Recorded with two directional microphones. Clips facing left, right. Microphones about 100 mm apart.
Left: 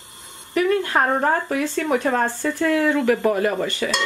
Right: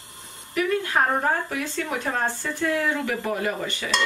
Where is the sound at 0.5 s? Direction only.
40° left (ahead or behind).